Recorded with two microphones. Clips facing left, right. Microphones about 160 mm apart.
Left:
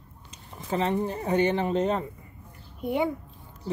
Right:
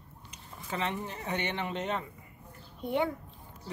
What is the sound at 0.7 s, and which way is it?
Speech, 35° left (ahead or behind).